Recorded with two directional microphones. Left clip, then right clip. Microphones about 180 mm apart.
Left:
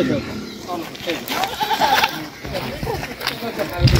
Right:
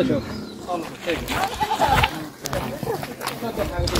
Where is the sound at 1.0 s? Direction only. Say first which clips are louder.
Left 2 dB; 10° left (ahead or behind).